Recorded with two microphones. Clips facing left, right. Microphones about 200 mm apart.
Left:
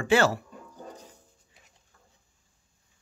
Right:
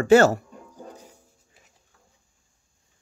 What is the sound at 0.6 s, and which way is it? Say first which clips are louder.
Dog: right 3 dB; 10° right (ahead or behind).